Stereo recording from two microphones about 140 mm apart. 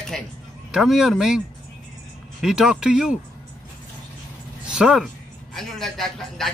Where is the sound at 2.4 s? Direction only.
5° right (ahead or behind).